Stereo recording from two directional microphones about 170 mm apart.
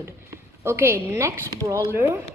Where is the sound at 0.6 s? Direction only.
15° right (ahead or behind).